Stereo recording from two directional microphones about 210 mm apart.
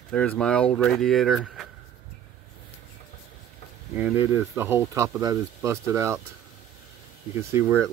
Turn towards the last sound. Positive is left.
turn(degrees=-10)  # may be behind; listen again after turning